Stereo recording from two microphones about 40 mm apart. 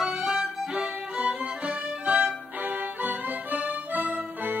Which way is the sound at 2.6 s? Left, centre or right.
Right.